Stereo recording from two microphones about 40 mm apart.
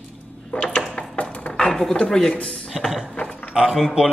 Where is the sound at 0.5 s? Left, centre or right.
Left.